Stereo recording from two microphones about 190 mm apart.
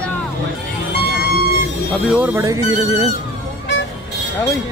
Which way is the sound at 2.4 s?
15° right (ahead or behind).